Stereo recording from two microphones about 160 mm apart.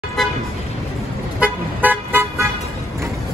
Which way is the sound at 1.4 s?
10° right (ahead or behind).